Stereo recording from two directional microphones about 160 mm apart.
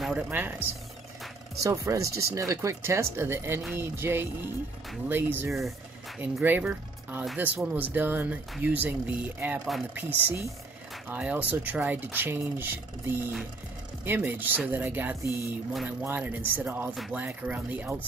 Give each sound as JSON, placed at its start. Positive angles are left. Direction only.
{"t": 0.0, "sound": "speech", "side_deg": -10}
{"t": 1.6, "sound": "speech", "side_deg": -20}